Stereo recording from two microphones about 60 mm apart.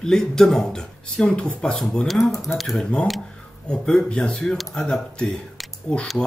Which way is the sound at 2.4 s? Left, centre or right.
Centre.